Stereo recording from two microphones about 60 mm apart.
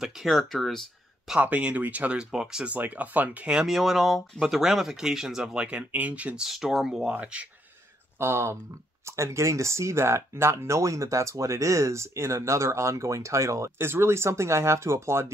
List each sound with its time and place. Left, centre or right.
0.0 s speech: centre
1.4 s speech: right
2.1 s speech: centre
2.7 s speech: right
3.6 s speech: centre; by 6.4 s right
6.4 s speech: centre
7.1 s speech: right
8.2 s speech: right
13.7 s speech: right